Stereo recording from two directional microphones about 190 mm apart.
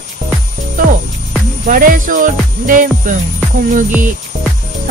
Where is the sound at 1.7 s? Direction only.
45° right (ahead or behind).